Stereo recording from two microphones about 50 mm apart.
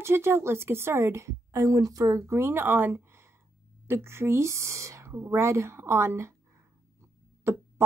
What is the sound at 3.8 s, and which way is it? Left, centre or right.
Speech, right.